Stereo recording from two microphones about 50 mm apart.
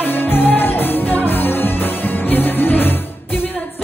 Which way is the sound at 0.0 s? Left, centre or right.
Left.